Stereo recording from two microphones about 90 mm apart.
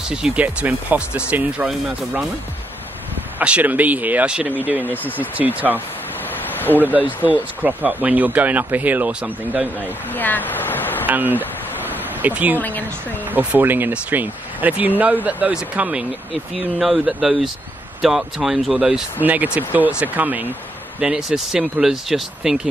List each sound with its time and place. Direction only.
0.1 s speech: 10° right (ahead or behind)
3.3 s speech: 15° right (ahead or behind)
4.8 s speech: 20° left (ahead or behind)
5.4 s speech: 20° right (ahead or behind)
6.8 s speech: 20° right (ahead or behind)
7.1 s speech: 20° left (ahead or behind)
7.6 s speech: 15° right (ahead or behind)
10.1 s speech: 20° left (ahead or behind)
11.1 s speech: 20° right (ahead or behind)
11.9 s a sound: 20° right (ahead or behind)
12.5 s speech: 20° left (ahead or behind)
13.3 s speech: 15° right (ahead or behind)
19.2 s speech: 20° right (ahead or behind)
21.0 s speech: 10° right (ahead or behind)